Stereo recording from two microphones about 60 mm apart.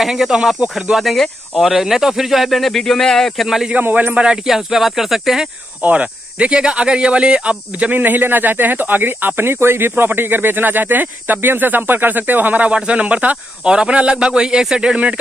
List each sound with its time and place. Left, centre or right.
0.0 s speech: centre
1.6 s speech: centre
3.9 s speech: right
4.5 s speech: centre
5.8 s speech: right
8.0 s speech: right
12.7 s speech: centre